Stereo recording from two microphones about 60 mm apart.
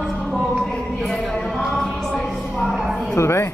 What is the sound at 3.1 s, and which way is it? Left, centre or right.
Music, left.